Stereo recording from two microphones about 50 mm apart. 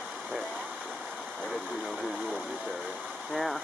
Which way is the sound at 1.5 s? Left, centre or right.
Centre.